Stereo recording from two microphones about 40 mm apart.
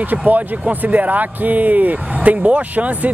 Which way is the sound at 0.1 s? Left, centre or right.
Right.